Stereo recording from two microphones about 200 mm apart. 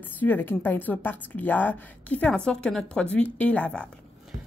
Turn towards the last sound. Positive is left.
turn(degrees=5)  # may be behind; listen again after turning